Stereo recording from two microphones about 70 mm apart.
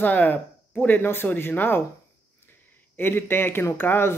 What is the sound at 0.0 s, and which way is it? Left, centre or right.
Speech, left.